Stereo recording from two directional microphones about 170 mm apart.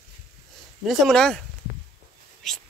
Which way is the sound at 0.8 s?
Centre (ahead or behind).